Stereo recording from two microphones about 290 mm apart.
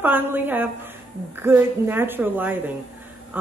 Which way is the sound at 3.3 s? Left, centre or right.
Centre.